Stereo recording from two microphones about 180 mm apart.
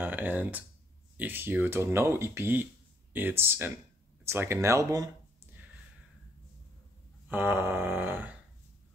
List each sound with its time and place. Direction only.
0.0 s speech: 10° right (ahead or behind)
7.2 s speech: 10° right (ahead or behind)